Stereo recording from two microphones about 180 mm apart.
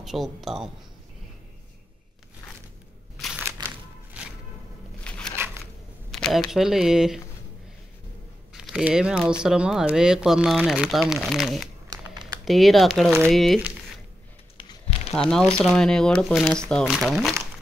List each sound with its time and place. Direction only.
0.0 s speech: centre (ahead or behind)
3.2 s crushing: centre (ahead or behind)
3.4 s crushing: 15° right (ahead or behind)
5.0 s a sound: 5° left (ahead or behind)
6.1 s speech: centre (ahead or behind)
8.5 s speech: 5° right (ahead or behind)
11.9 s a sound: 20° right (ahead or behind)
12.4 s speech: centre (ahead or behind)
14.6 s a sound: 30° left (ahead or behind)
15.1 s speech: 5° left (ahead or behind)